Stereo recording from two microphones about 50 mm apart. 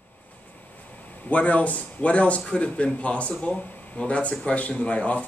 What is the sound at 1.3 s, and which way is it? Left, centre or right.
A man's voice, left.